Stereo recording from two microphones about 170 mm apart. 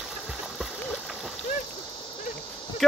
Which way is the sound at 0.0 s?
Centre (ahead or behind).